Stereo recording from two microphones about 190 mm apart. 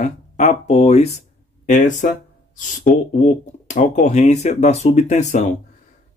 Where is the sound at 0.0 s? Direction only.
35° left (ahead or behind).